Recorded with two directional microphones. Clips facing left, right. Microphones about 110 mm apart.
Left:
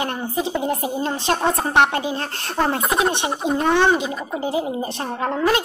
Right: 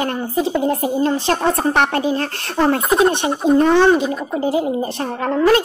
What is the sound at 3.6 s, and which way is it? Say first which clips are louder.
Speech: right 3 dB; 15° left (ahead or behind).